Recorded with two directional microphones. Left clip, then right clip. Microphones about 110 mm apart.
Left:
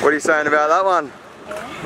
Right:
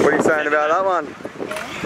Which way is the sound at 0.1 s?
25° left (ahead or behind).